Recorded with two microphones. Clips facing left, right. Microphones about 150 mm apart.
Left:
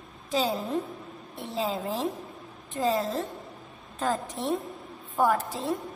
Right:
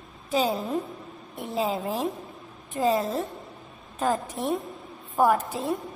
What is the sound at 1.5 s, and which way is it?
A woman's voice, 15° right (ahead or behind).